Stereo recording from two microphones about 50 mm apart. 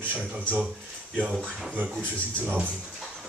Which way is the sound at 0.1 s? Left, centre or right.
Right.